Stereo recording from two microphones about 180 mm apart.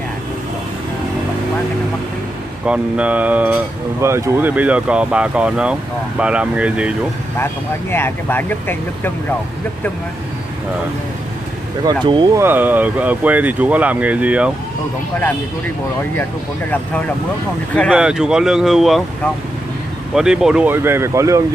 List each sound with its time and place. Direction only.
2.6 s speech: 5° right (ahead or behind)
7.9 s speech: 10° left (ahead or behind)
11.8 s speech: 25° right (ahead or behind)
12.4 s speech: 10° right (ahead or behind)
17.7 s speech: centre (ahead or behind)
20.2 s speech: 5° right (ahead or behind)